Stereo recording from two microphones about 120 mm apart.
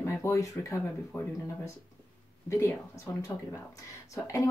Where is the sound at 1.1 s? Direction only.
15° left (ahead or behind).